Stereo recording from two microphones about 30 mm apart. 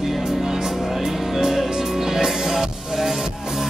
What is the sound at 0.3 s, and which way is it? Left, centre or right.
Music, centre.